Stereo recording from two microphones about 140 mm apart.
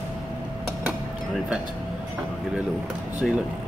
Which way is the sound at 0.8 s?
5° right (ahead or behind).